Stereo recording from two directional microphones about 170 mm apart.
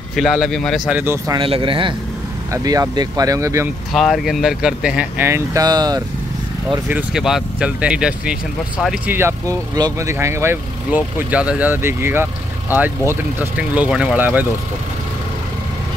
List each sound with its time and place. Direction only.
0.1 s speech: centre (ahead or behind); by 1.4 s 15° right (ahead or behind)
1.4 s speech: 30° right (ahead or behind)
3.9 s speech: centre (ahead or behind); by 6.0 s 25° right (ahead or behind)
6.9 s speech: 5° right (ahead or behind)